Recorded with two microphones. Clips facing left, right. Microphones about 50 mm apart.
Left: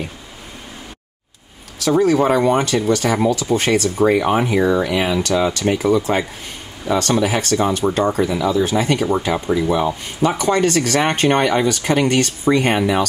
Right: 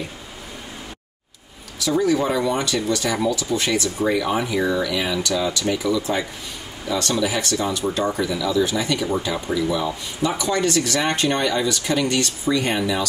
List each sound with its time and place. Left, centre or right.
1.8 s speech: left